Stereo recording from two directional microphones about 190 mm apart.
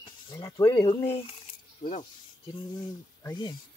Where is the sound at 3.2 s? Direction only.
20° left (ahead or behind).